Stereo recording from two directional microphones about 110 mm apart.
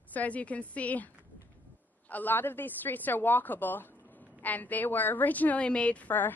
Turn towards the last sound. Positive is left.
turn(degrees=15)  # may be behind; listen again after turning